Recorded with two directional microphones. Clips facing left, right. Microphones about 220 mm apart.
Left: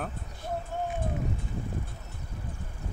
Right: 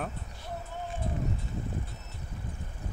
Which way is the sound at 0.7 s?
50° left (ahead or behind).